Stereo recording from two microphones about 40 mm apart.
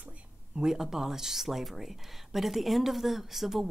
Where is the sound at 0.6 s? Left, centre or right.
Centre.